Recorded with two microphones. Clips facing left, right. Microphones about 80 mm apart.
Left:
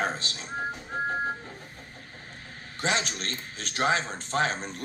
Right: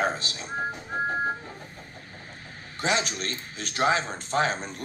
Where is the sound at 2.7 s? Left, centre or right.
Centre.